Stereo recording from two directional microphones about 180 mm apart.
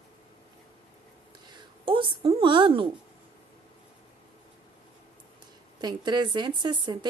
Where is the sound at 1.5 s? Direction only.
30° right (ahead or behind).